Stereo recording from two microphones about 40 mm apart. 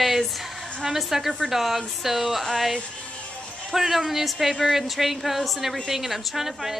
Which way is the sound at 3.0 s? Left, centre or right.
Left.